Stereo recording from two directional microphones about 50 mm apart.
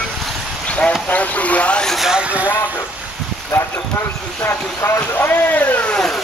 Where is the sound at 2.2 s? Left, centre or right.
Right.